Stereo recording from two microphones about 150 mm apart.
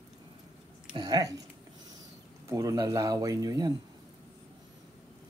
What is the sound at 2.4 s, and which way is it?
Speech, 25° right (ahead or behind).